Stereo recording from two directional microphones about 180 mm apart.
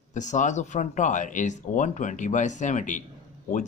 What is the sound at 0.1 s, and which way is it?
Speech, 40° left (ahead or behind).